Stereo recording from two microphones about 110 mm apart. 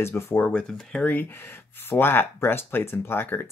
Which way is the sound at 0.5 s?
10° left (ahead or behind).